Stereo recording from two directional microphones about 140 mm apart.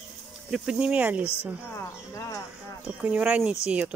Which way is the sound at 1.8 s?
20° left (ahead or behind).